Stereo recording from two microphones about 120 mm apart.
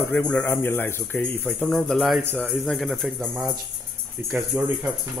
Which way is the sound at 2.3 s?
15° right (ahead or behind).